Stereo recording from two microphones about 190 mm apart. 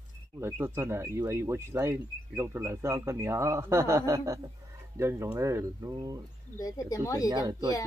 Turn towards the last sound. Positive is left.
turn(degrees=-20)  # may be behind; listen again after turning